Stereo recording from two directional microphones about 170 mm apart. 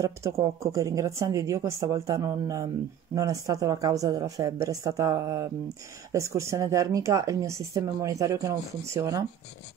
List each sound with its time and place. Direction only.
0.0 s speech: 15° right (ahead or behind)